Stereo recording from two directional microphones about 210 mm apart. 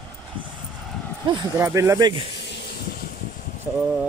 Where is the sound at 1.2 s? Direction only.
15° right (ahead or behind).